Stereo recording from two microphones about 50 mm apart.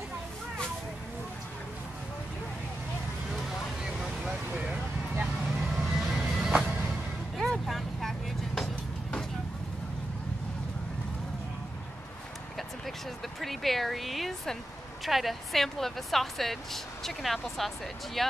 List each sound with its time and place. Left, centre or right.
5.5 s vehicle: centre
7.3 s vehicle: centre
13.4 s speech: centre